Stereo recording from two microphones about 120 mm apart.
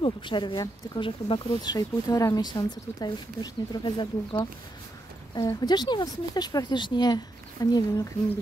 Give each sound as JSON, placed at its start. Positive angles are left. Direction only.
{"t": 0.0, "sound": "speech", "side_deg": 40}
{"t": 5.3, "sound": "speech", "side_deg": 35}